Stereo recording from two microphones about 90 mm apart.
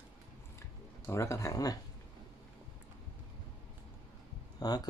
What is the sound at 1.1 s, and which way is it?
Speech, 35° left (ahead or behind).